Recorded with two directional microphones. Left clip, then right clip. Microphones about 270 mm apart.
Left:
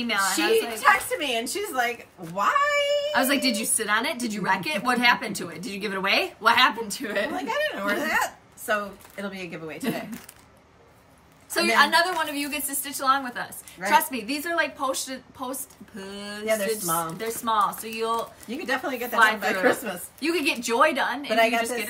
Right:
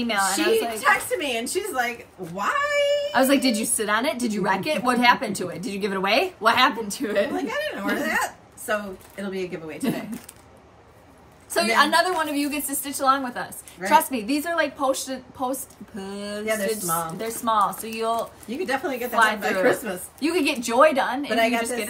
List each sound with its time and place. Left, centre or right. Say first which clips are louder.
0.0 s a woman's voice: right 1 dB; centre
0.7 s speech: even; centre
3.1 s a woman's voice: right 3 dB; centre
7.3 s speech: even; centre
11.5 s a woman's voice: right 1 dB; centre
18.5 s speech: right 1 dB; centre
19.1 s a woman's voice: even; centre
19.6 s speech: right 3 dB; centre
20.2 s a woman's voice: right 2 dB; centre
21.3 s speech: even; centre